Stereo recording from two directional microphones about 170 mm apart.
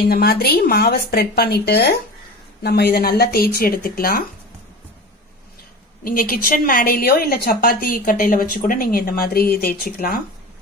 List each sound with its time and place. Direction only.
0.1 s a woman's voice: 65° left (ahead or behind)
6.0 s a woman's voice: 55° left (ahead or behind)